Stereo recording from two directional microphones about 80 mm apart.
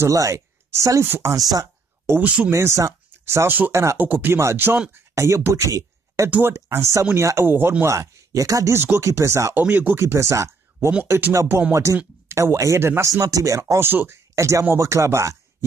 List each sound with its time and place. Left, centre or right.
0.0 s speech: right
2.2 s speech: centre
2.5 s speech: right
4.0 s speech: right
6.3 s speech: right
7.8 s speech: right
8.7 s speech: right
9.6 s speech: right
11.1 s speech: right
11.7 s speech: right
13.1 s speech: right
13.7 s speech: right
14.3 s speech: right